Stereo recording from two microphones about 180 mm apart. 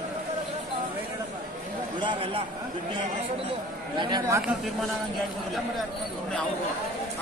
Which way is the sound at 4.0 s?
25° right (ahead or behind).